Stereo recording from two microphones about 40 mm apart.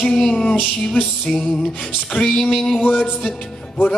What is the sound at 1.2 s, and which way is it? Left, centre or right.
Music, centre.